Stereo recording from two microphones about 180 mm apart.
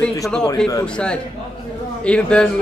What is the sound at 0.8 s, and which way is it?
A man's voice, 5° left (ahead or behind).